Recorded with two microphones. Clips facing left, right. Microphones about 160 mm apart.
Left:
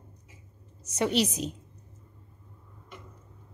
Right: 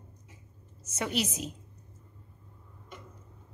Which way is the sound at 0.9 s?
35° left (ahead or behind).